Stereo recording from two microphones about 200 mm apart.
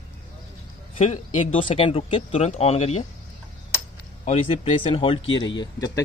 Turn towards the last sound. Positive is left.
turn(degrees=20)  # may be behind; listen again after turning